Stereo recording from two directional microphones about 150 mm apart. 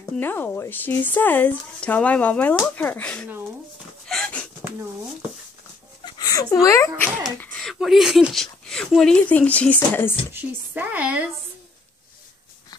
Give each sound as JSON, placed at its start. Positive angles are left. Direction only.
{"t": 0.2, "sound": "speech", "side_deg": 15}
{"t": 4.1, "sound": "a sound", "side_deg": 5}
{"t": 6.0, "sound": "speech", "side_deg": 25}
{"t": 7.3, "sound": "speech", "side_deg": 5}
{"t": 10.3, "sound": "speech", "side_deg": -10}